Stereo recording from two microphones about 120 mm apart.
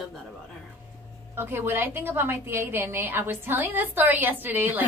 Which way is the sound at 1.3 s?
20° right (ahead or behind).